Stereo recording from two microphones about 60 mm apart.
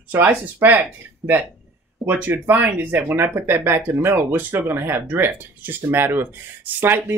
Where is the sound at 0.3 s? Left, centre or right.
Right.